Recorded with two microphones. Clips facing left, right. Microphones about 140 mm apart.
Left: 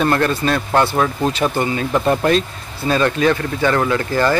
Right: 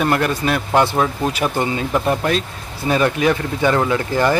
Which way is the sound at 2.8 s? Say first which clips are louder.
Left 1 dB; 15° right (ahead or behind).